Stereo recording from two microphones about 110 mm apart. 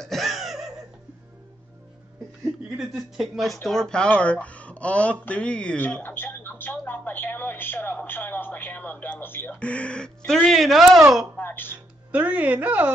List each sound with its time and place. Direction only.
0.0 s a sound: centre (ahead or behind)
2.8 s a woman's voice: centre (ahead or behind)
11.3 s music: 15° left (ahead or behind)
12.1 s a woman's voice: 10° right (ahead or behind)